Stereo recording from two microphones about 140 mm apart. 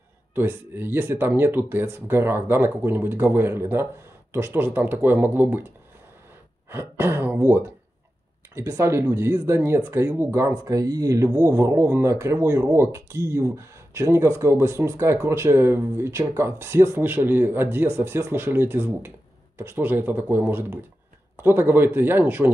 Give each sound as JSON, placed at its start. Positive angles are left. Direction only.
{"t": 0.3, "sound": "speech", "side_deg": -15}
{"t": 6.7, "sound": "speech", "side_deg": -15}